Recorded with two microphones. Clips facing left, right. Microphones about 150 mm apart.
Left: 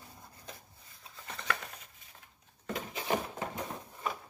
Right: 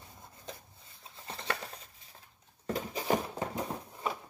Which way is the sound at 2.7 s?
35° right (ahead or behind).